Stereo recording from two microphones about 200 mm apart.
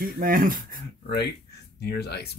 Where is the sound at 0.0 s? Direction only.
45° right (ahead or behind).